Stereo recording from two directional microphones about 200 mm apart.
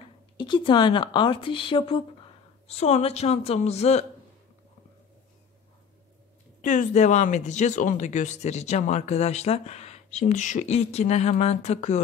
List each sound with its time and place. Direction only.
0.4 s speech: 25° left (ahead or behind)
6.6 s speech: 40° left (ahead or behind)